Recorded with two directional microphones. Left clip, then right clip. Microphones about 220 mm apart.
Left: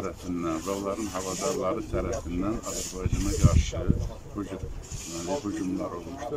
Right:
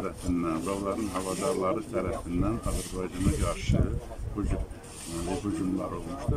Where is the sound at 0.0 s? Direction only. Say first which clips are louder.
Right 1 dB; centre (ahead or behind).